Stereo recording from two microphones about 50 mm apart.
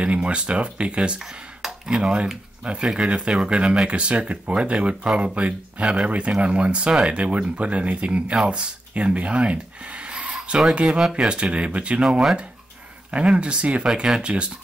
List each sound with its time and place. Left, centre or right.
0.0 s speech: right
1.2 s speech: centre
10.3 s a sound: centre
10.7 s speech: centre
13.1 s speech: right